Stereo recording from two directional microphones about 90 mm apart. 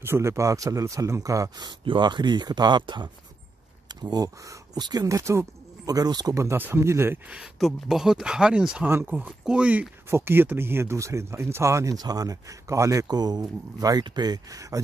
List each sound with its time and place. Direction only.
0.0 s speech: 30° right (ahead or behind)
1.6 s speech: 55° right (ahead or behind)
5.0 s speech: 35° right (ahead or behind)
5.9 s speech: 45° right (ahead or behind)
6.3 s speech: 30° right (ahead or behind)
7.5 s speech: centre (ahead or behind)
8.8 s speech: 20° right (ahead or behind)
10.0 s speech: 25° right (ahead or behind)